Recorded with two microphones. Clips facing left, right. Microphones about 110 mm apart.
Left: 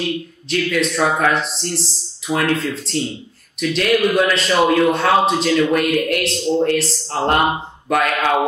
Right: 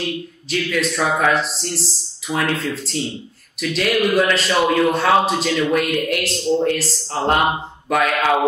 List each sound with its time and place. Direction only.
0.5 s a man's voice: centre (ahead or behind)